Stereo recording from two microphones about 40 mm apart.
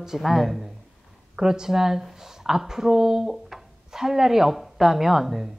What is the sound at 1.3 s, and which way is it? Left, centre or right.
Speech, centre.